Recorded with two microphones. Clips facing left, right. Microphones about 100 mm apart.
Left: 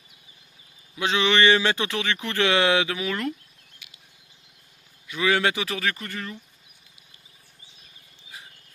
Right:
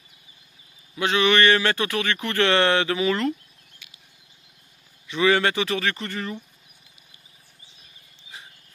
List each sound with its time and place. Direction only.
0.9 s speech: 15° left (ahead or behind)
3.8 s bird flight: 15° left (ahead or behind)
5.0 s speech: centre (ahead or behind)